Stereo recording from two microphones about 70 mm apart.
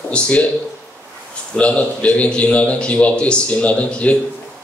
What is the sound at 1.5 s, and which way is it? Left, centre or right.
A man's voice, centre.